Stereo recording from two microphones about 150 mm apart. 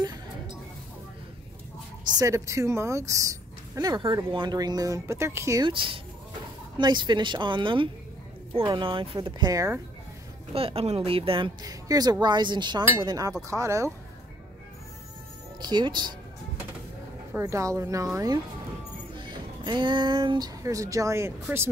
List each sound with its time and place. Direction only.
2.1 s speech: 20° right (ahead or behind)
5.7 s speech: 35° right (ahead or behind)
9.5 s speech: 20° right (ahead or behind)
10.5 s speech: 40° right (ahead or behind); by 13.9 s 20° right (ahead or behind)
15.6 s speech: 30° right (ahead or behind)
17.3 s speech: 20° right (ahead or behind)